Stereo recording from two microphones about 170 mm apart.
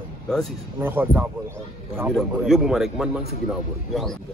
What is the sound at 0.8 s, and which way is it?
Speech, 10° right (ahead or behind).